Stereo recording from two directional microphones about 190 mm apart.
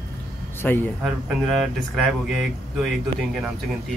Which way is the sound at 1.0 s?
Centre (ahead or behind).